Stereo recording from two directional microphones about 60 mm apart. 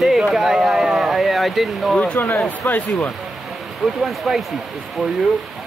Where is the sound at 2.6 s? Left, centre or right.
Left.